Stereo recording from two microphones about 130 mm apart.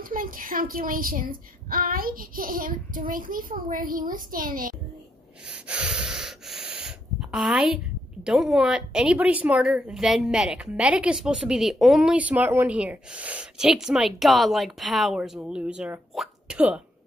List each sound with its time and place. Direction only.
0.0 s a woman's voice: 90° right
5.5 s gasp: 10° right (ahead or behind)